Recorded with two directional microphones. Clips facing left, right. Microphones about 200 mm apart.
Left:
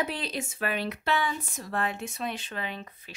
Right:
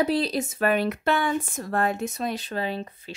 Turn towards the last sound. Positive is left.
turn(degrees=-35)  # may be behind; listen again after turning